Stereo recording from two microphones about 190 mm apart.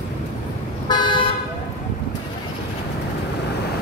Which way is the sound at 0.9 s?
25° left (ahead or behind).